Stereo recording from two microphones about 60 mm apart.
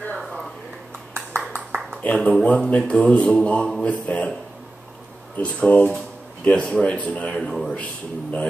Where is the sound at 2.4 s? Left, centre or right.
Centre.